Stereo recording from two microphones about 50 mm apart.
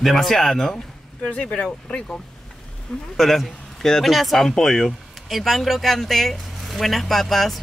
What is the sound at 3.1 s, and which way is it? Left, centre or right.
Speech, centre.